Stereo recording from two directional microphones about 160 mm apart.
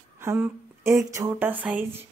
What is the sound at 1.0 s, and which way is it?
Speech, 20° right (ahead or behind).